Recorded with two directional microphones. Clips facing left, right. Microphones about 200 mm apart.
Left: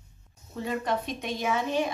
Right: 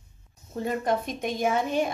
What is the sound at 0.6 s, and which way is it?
A woman's voice, 45° right (ahead or behind).